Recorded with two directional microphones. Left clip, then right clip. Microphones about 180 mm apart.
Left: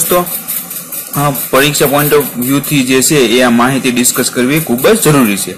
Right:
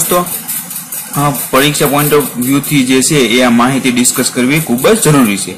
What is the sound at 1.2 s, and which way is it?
Speech, 20° left (ahead or behind).